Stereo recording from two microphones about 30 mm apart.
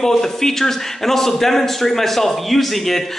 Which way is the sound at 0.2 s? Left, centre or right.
Centre.